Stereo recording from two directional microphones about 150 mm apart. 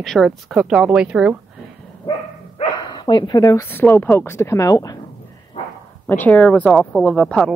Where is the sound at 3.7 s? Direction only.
15° left (ahead or behind).